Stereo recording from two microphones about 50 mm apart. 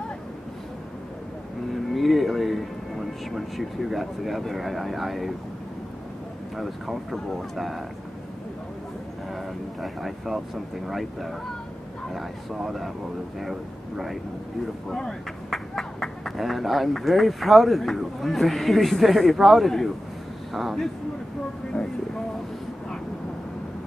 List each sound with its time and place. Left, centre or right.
1.7 s music: centre
3.3 s speech: centre
6.5 s speech: centre
9.3 s speech: centre
14.9 s speech: centre
21.7 s speech: left